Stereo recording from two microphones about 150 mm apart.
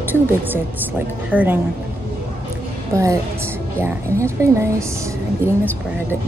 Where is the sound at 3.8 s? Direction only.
20° right (ahead or behind).